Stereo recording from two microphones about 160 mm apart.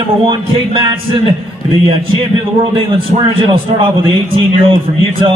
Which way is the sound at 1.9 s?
35° right (ahead or behind).